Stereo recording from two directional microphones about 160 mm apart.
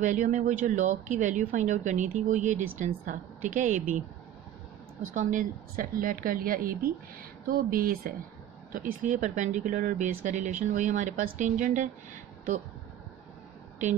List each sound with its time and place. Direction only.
0.0 s speech: 50° right (ahead or behind)
5.1 s a woman's voice: 60° right (ahead or behind)